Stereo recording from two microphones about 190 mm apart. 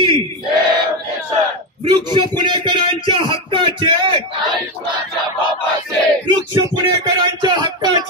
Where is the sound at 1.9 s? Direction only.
25° right (ahead or behind).